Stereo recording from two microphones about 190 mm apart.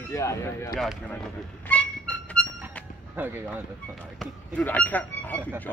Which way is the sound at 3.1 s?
10° right (ahead or behind).